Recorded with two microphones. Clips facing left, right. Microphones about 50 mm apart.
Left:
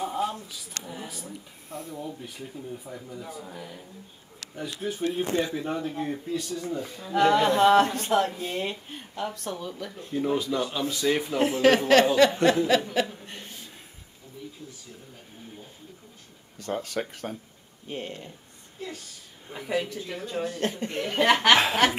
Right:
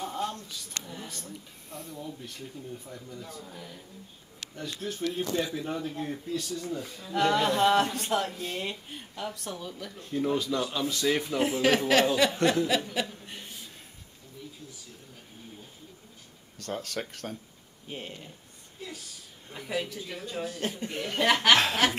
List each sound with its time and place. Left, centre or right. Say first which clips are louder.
0.0 s a sound: left 4 dB; centre
0.8 s speech: left 3 dB; centre
12.9 s chuckle: left 5 dB; centre
16.5 s a woman's voice: left 4 dB; centre